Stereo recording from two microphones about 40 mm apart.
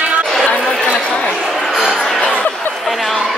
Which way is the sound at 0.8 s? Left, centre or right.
Left.